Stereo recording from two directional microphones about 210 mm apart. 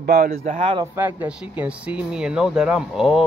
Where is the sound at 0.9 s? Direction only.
10° right (ahead or behind).